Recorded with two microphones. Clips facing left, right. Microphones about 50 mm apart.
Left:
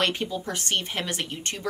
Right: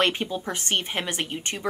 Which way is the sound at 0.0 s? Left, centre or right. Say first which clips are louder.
Right 2 dB; right.